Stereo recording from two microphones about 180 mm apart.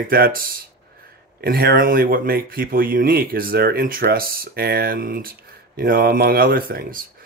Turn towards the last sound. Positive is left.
turn(degrees=-50)  # may be behind; listen again after turning